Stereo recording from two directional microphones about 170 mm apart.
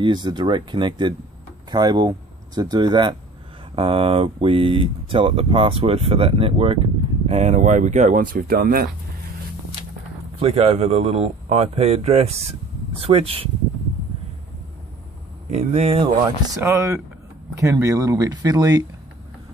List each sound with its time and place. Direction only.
0.0 s speech: 25° right (ahead or behind); by 8.8 s 60° right (ahead or behind)
10.4 s speech: 35° right (ahead or behind)
15.5 s speech: 40° right (ahead or behind)
16.4 s speech: 15° right (ahead or behind)